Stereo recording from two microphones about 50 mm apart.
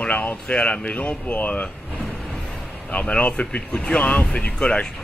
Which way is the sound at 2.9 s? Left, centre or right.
Left.